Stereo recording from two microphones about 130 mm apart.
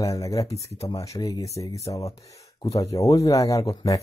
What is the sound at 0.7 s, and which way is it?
Speech, 55° left (ahead or behind).